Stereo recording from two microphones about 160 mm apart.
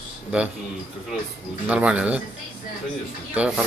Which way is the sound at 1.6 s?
10° right (ahead or behind).